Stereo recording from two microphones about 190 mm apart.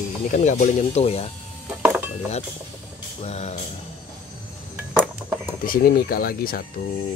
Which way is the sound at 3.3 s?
35° left (ahead or behind).